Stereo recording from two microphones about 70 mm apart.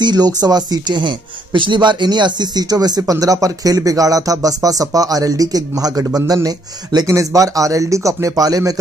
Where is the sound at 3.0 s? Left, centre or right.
Right.